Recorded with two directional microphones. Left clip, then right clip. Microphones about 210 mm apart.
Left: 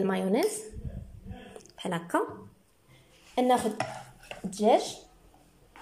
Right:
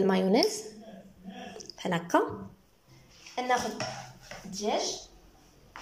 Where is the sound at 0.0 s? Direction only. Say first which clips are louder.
Right 2 dB; centre (ahead or behind).